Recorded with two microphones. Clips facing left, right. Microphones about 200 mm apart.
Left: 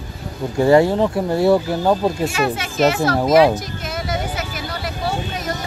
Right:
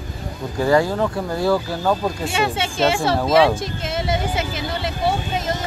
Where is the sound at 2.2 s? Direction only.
25° right (ahead or behind).